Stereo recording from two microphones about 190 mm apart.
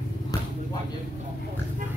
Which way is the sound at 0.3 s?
20° left (ahead or behind).